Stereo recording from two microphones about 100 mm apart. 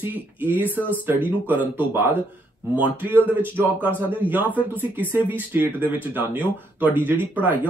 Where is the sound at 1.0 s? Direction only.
20° right (ahead or behind).